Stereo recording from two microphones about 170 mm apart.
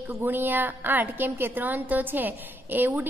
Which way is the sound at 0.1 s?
10° right (ahead or behind).